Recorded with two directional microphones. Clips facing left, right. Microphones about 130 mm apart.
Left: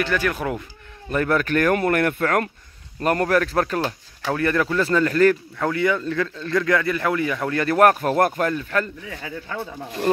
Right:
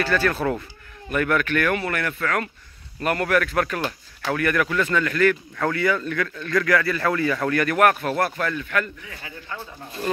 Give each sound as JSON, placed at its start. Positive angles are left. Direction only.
{"t": 0.0, "sound": "speech", "side_deg": 15}
{"t": 1.1, "sound": "speech", "side_deg": 30}
{"t": 5.6, "sound": "a man's voice", "side_deg": 20}
{"t": 7.6, "sound": "speech", "side_deg": 35}